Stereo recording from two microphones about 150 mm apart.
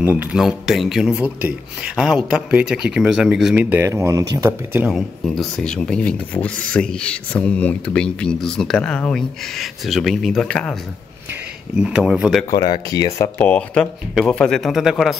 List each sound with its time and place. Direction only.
0.0 s speech: 10° right (ahead or behind)
3.5 s speech: 15° right (ahead or behind)
4.9 s speech: centre (ahead or behind)
11.8 s speech: 5° right (ahead or behind)
12.4 s speech: 25° left (ahead or behind); by 15.1 s centre (ahead or behind)